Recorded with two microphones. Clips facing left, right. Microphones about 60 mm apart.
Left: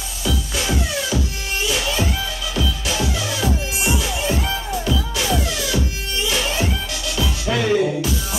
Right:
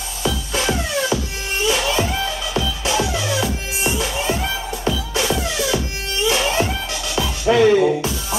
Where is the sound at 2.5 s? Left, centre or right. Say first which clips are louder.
Right 3 dB; right.